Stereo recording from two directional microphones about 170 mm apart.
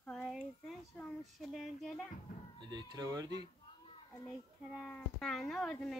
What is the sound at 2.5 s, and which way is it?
Speech, 25° right (ahead or behind).